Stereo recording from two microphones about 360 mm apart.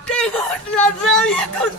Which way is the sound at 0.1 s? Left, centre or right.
Centre.